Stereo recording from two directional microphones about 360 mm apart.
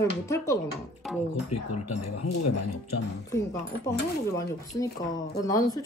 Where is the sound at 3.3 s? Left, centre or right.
Centre.